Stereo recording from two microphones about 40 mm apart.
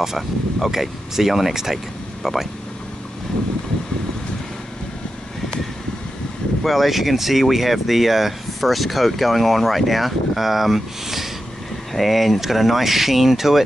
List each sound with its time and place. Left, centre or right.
0.0 s speech: centre
6.6 s speech: centre